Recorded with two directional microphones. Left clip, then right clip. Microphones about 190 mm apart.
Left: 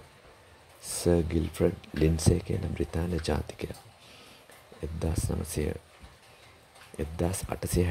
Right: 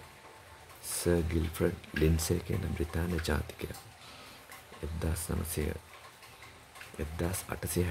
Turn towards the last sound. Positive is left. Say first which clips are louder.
# left 4 dB
turn(degrees=20)  # may be behind; listen again after turning